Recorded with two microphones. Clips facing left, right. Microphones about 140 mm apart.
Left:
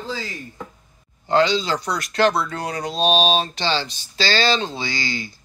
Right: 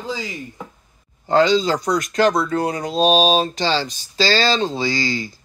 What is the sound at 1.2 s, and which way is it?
Speech, 40° right (ahead or behind).